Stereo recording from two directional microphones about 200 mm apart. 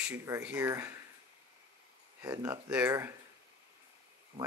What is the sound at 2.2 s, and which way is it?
Speech, 10° right (ahead or behind).